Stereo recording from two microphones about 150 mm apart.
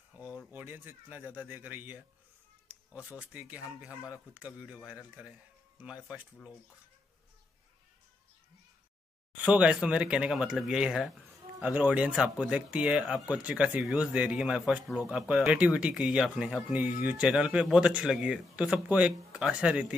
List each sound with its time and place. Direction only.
0.1 s a sound: 10° right (ahead or behind)
0.5 s speech: 15° right (ahead or behind)
3.3 s speech: 10° right (ahead or behind)
9.4 s speech: 10° right (ahead or behind)